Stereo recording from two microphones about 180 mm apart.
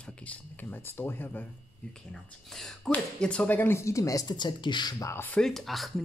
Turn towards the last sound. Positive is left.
turn(degrees=0)  # may be behind; listen again after turning